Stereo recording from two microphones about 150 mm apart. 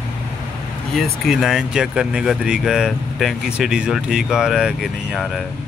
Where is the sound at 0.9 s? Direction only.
Centre (ahead or behind).